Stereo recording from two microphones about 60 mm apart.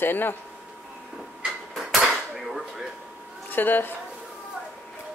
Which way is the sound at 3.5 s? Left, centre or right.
Left.